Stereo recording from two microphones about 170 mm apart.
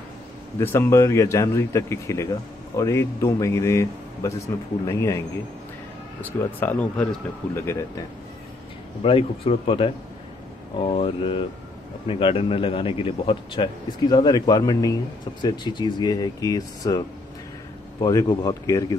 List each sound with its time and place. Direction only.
0.6 s speech: 15° left (ahead or behind)
6.6 s speech: 10° left (ahead or behind)
9.0 s a man's voice: 35° left (ahead or behind)
18.0 s speech: 25° left (ahead or behind)